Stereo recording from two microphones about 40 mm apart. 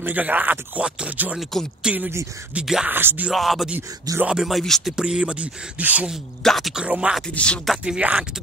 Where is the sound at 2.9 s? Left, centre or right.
Right.